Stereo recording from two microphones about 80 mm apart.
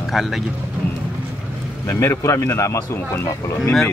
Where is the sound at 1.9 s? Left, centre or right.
Left.